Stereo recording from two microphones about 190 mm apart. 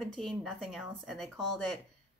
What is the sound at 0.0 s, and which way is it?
A woman's voice, centre (ahead or behind).